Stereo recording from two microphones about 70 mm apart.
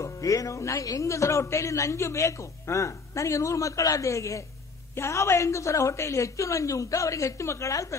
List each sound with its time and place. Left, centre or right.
0.0 s speech: left